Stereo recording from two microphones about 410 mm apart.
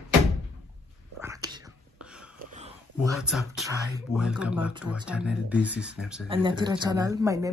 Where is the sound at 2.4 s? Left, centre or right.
Centre.